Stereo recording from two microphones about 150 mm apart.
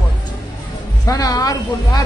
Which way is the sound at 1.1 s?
25° left (ahead or behind).